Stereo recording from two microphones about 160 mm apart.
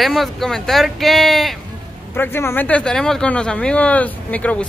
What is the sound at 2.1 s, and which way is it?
Speech, 15° left (ahead or behind).